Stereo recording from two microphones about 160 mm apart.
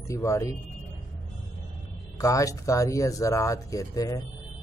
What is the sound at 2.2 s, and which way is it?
Speech, 20° left (ahead or behind).